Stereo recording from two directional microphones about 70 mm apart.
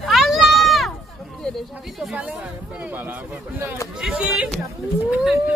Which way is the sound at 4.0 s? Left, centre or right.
Centre.